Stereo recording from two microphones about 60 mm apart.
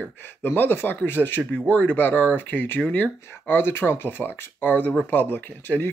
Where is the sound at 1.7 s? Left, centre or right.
Left.